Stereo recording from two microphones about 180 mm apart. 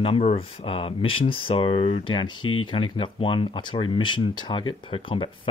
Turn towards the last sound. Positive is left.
turn(degrees=25)  # may be behind; listen again after turning